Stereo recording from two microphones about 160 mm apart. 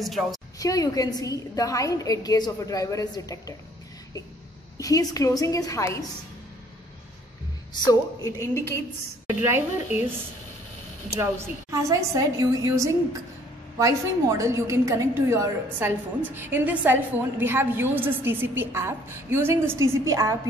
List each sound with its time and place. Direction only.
0.0 s a woman's voice: centre (ahead or behind)
0.6 s a woman's voice: 20° left (ahead or behind)
4.7 s a woman's voice: 20° left (ahead or behind)
7.8 s a woman's voice: 20° left (ahead or behind)
9.3 s a woman's voice: 10° right (ahead or behind)
11.1 s a woman's voice: 15° right (ahead or behind)